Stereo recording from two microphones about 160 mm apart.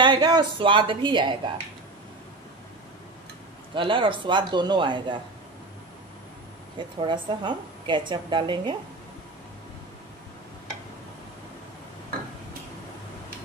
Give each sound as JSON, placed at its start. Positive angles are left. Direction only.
{"t": 0.0, "sound": "a woman's voice", "side_deg": -30}
{"t": 3.7, "sound": "a woman's voice", "side_deg": -30}
{"t": 6.8, "sound": "a woman's voice", "side_deg": -30}